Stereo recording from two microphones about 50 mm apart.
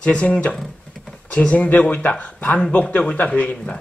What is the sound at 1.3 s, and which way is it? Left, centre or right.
Speech, left.